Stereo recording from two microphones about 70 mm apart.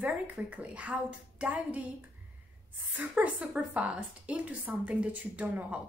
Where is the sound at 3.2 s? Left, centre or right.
Right.